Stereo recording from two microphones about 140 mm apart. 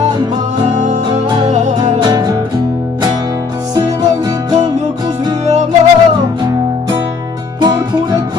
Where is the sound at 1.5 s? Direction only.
55° right (ahead or behind).